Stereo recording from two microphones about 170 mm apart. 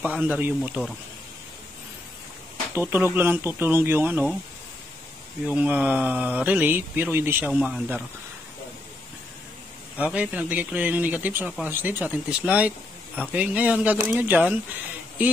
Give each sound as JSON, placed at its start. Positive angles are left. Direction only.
{"t": 0.0, "sound": "speech", "side_deg": -10}
{"t": 2.7, "sound": "speech", "side_deg": -10}
{"t": 5.5, "sound": "speech", "side_deg": -10}
{"t": 9.9, "sound": "speech", "side_deg": -10}